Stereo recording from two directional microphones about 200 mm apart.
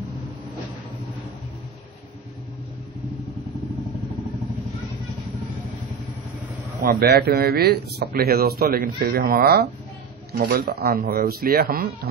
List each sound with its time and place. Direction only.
6.8 s speech: 50° right (ahead or behind)